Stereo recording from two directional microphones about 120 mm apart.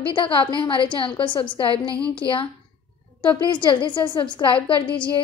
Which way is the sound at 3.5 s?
40° left (ahead or behind).